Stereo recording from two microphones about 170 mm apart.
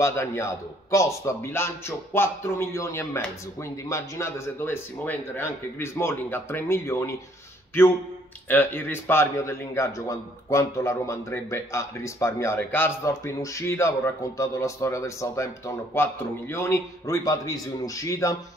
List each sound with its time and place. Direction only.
0.0 s a man's voice: 15° left (ahead or behind)
8.5 s a man's voice: 10° left (ahead or behind)